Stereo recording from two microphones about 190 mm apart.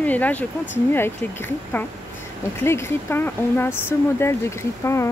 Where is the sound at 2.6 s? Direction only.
10° left (ahead or behind).